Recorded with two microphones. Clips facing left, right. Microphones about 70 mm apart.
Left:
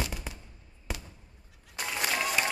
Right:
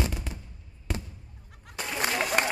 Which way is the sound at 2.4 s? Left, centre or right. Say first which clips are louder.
Right 4 dB; right.